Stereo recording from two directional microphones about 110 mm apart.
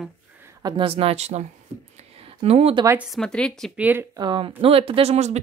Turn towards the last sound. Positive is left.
turn(degrees=-80)